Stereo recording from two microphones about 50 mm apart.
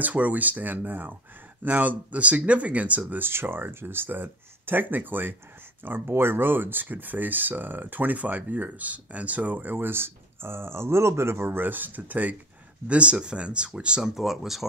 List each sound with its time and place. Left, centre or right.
0.0 s speech: right
3.2 s speech: right
12.8 s speech: right
14.1 s speech: centre